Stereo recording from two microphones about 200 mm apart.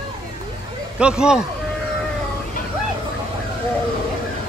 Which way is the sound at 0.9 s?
5° right (ahead or behind).